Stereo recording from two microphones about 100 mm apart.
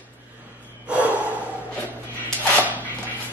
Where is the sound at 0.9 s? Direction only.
15° right (ahead or behind).